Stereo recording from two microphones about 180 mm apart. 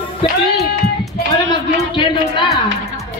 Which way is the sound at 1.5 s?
25° left (ahead or behind).